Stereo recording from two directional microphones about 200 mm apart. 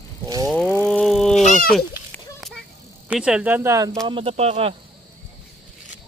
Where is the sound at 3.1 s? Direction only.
5° right (ahead or behind).